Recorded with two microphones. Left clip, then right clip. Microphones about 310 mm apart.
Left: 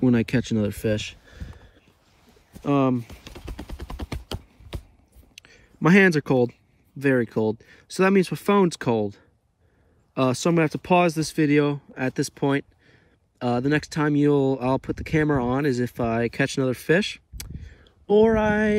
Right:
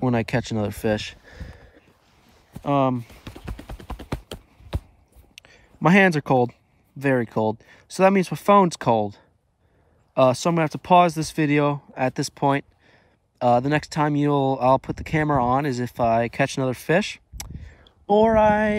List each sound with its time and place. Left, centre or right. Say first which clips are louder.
0.0 s speech: left 1 dB; centre
2.6 s speech: right 1 dB; centre
5.3 s a sound: right 1 dB; centre
7.0 s speech: even; centre